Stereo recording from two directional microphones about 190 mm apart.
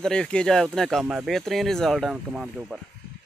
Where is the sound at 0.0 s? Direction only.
5° left (ahead or behind).